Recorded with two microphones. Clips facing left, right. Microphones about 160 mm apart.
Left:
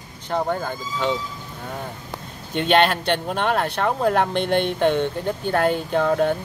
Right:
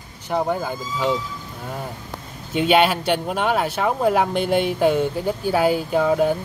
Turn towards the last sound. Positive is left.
turn(degrees=-5)  # may be behind; listen again after turning